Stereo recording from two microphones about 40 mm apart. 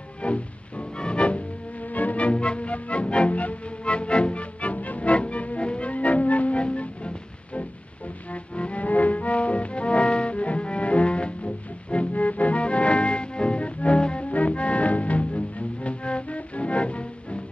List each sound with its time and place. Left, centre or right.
0.2 s music: left